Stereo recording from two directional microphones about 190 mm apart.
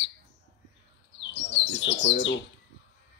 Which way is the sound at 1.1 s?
70° left (ahead or behind).